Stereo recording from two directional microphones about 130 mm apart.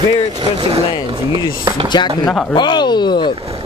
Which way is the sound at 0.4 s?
45° right (ahead or behind).